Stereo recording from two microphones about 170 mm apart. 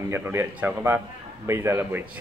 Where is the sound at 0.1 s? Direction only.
15° right (ahead or behind).